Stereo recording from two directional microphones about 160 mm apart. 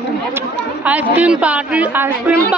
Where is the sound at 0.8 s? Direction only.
10° right (ahead or behind).